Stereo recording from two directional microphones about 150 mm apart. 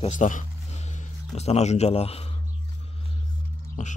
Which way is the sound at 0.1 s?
55° left (ahead or behind).